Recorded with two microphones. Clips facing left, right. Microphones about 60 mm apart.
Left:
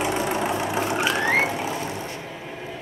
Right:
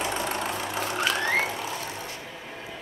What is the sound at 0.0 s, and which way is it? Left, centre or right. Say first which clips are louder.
Vehicle: left 5 dB; centre.